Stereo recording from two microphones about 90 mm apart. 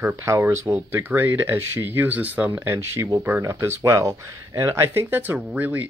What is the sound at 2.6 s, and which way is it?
Speech, 30° right (ahead or behind).